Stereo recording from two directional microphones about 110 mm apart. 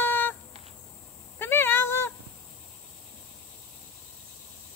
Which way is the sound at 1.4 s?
20° left (ahead or behind).